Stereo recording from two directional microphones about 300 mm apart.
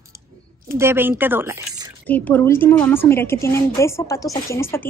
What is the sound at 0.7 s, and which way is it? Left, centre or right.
Speech, centre.